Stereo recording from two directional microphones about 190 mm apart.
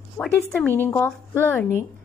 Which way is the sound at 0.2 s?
5° left (ahead or behind).